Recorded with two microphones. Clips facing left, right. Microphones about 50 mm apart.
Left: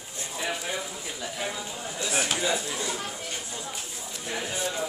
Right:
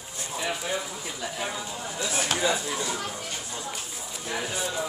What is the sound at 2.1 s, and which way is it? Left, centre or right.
Speech, centre.